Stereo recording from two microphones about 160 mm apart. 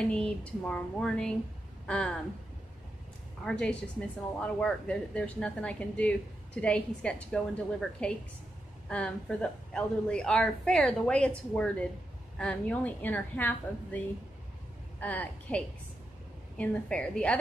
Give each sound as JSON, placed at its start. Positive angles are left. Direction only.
{"t": 0.0, "sound": "speech", "side_deg": 5}
{"t": 3.4, "sound": "speech", "side_deg": 5}